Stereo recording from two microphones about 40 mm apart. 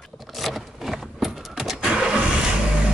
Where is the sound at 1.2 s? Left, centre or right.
Centre.